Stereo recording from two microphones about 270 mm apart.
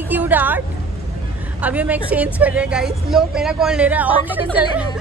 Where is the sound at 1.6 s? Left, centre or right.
Centre.